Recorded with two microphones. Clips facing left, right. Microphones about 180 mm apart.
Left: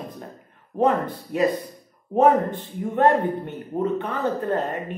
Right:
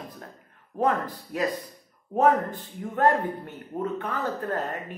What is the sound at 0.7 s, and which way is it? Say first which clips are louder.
Speech: left 5 dB; 25° left (ahead or behind).